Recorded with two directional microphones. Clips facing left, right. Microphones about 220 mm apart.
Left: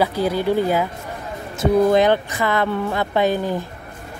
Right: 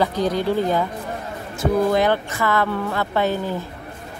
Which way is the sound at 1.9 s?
20° left (ahead or behind).